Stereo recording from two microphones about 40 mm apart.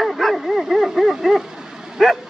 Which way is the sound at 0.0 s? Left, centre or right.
Centre.